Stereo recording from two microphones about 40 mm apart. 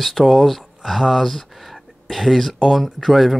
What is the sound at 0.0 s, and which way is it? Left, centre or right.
Speech, centre.